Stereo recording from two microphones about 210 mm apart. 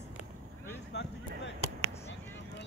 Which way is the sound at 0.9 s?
55° left (ahead or behind).